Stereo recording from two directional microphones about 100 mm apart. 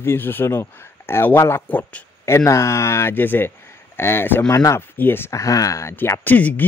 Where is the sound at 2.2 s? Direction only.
30° left (ahead or behind).